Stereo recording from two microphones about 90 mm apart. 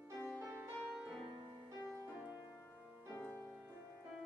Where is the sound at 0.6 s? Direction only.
10° right (ahead or behind).